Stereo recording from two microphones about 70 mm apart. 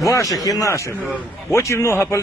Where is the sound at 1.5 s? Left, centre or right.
Left.